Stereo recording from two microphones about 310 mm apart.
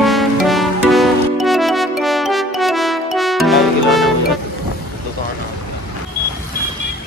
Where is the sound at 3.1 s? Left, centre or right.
Centre.